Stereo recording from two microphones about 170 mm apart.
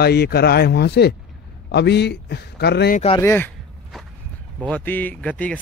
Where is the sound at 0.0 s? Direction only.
70° left (ahead or behind).